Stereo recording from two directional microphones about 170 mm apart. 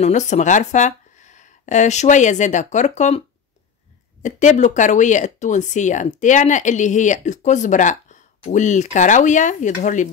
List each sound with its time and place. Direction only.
0.0 s speech: 45° left (ahead or behind)
4.2 s speech: 45° left (ahead or behind)